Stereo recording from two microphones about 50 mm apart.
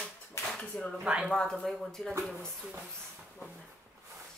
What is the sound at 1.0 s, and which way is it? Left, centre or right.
Speech, right.